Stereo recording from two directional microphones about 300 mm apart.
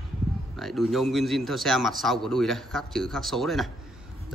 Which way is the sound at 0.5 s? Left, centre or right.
Centre.